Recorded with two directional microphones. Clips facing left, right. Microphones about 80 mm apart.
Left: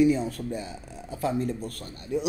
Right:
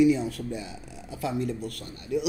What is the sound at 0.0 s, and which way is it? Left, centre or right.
Speech, left.